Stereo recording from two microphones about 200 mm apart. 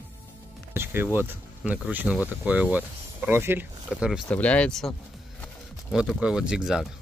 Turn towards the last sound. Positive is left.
turn(degrees=-5)  # may be behind; listen again after turning